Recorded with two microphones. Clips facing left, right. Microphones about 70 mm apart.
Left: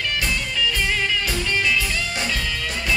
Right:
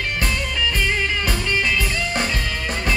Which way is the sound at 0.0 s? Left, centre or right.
Right.